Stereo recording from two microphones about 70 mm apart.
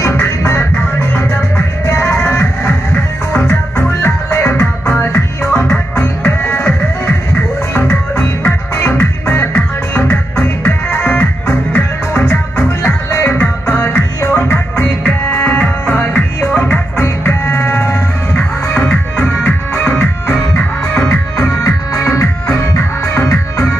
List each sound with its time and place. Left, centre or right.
0.0 s music: left
21.1 s music: left